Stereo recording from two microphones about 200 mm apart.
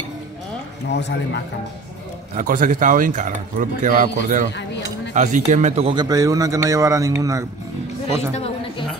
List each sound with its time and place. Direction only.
0.8 s a man's voice: 60° left (ahead or behind)
2.3 s speech: 40° right (ahead or behind); by 7.4 s 15° right (ahead or behind)